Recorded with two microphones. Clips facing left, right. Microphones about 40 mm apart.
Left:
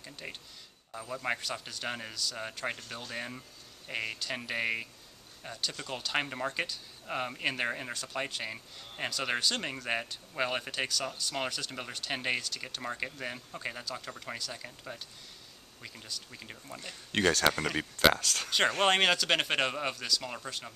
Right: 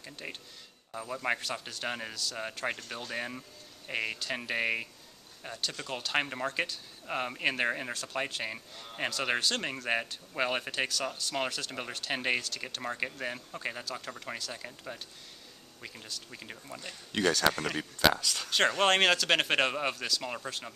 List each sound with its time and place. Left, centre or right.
0.0 s speech: centre
17.1 s speech: left
17.5 s speech: centre